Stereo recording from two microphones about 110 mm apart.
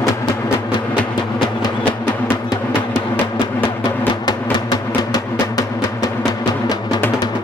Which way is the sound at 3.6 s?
40° left (ahead or behind).